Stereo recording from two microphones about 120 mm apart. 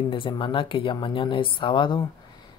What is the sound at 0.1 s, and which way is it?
Speech, 45° left (ahead or behind).